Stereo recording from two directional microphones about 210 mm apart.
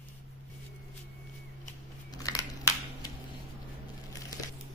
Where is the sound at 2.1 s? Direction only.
15° left (ahead or behind).